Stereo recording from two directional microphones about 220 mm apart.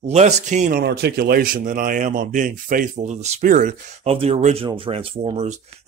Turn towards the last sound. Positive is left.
turn(degrees=-30)  # may be behind; listen again after turning